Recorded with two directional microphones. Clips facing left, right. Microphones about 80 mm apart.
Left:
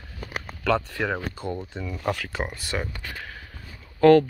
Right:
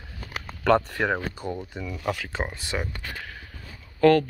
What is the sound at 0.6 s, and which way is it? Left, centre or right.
Speech, right.